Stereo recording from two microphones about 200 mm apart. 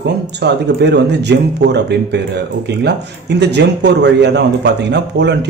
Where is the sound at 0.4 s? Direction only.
55° right (ahead or behind).